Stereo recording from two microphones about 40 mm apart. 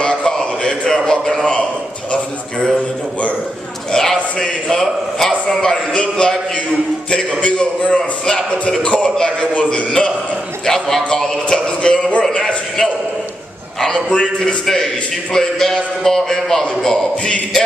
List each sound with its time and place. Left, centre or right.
0.0 s a sound: left
3.9 s a man's voice: centre; by 9.5 s left
9.8 s a man's voice: centre
13.7 s a man's voice: centre